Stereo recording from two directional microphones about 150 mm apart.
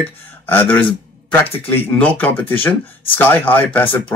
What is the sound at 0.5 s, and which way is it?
Speech, 15° left (ahead or behind).